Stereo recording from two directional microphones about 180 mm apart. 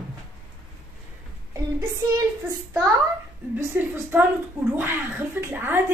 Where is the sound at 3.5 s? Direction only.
15° right (ahead or behind).